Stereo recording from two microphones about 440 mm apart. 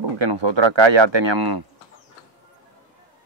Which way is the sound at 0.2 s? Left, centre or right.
Right.